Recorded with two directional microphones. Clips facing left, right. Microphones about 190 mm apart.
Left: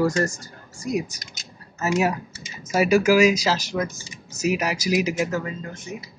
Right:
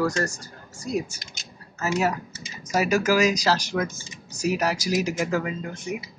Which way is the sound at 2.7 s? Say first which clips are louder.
Left 4 dB; 10° left (ahead or behind).